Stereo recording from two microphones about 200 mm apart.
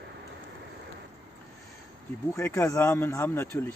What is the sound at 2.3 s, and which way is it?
Speech, 15° left (ahead or behind).